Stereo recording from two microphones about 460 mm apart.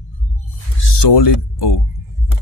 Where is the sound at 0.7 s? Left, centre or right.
Left.